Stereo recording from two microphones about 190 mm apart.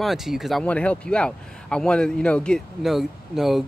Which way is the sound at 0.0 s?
Centre (ahead or behind).